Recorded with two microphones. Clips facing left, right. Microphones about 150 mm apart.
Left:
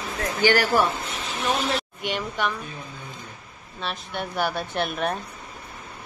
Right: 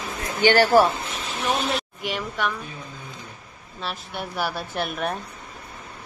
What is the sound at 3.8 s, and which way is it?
A woman's voice, 5° right (ahead or behind).